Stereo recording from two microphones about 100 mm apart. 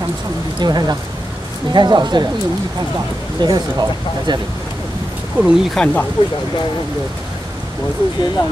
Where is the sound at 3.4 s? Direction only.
40° right (ahead or behind).